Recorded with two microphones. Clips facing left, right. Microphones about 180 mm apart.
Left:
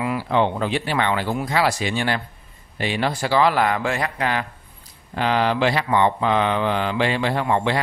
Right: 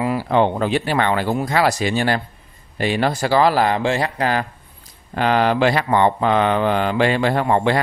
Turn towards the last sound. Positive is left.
turn(degrees=-45)  # may be behind; listen again after turning